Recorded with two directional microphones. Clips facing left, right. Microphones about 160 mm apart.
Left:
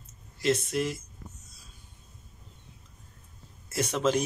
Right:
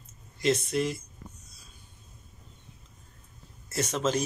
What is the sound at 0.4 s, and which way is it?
Speech, 5° left (ahead or behind).